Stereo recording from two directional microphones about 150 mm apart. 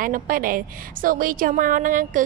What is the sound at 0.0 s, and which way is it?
A woman's voice, 70° right (ahead or behind).